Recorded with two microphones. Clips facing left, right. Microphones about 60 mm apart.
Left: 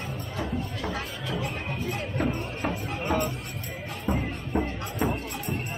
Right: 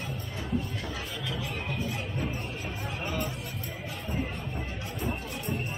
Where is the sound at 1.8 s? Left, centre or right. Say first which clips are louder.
Left 5 dB; left.